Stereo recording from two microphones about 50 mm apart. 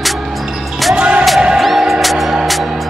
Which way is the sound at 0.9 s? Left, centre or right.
Right.